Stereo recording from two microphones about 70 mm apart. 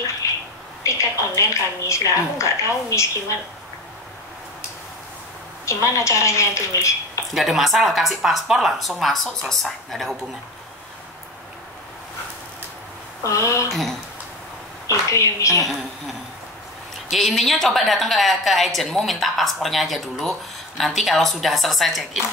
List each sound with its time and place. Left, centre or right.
0.2 s a sound: left
0.8 s a woman's voice: left
5.7 s a woman's voice: left
7.3 s a woman's voice: centre
13.2 s a woman's voice: left
13.7 s speech: centre
15.0 s a woman's voice: left
17.1 s a woman's voice: centre